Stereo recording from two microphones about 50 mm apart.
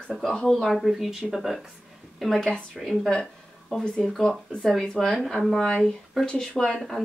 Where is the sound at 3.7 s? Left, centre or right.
Centre.